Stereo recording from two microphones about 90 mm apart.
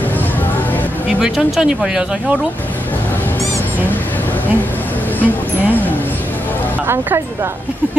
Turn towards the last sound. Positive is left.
turn(degrees=-30)  # may be behind; listen again after turning